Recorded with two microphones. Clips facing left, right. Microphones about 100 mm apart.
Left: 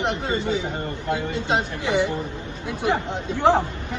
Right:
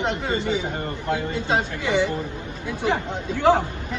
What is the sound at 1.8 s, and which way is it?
Speech, 20° left (ahead or behind).